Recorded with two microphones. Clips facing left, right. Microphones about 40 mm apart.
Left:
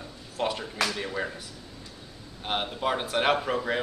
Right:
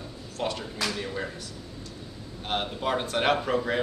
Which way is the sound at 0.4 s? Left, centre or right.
Centre.